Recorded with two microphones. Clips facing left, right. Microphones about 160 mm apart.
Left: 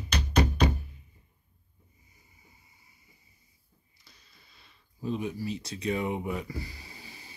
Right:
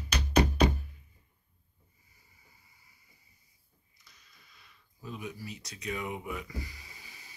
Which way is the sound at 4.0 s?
30° left (ahead or behind).